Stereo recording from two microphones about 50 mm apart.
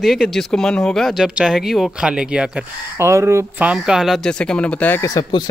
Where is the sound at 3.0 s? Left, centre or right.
Right.